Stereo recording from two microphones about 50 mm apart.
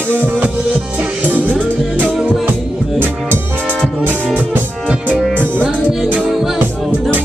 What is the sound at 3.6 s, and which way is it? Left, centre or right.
Music, left.